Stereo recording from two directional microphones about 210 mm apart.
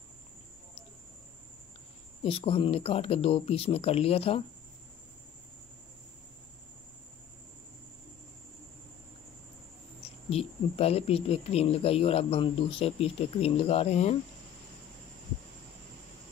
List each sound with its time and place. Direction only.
2.2 s speech: 25° left (ahead or behind)
10.3 s speech: 30° left (ahead or behind)